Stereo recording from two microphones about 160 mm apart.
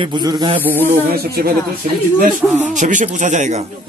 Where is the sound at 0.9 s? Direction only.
70° right (ahead or behind).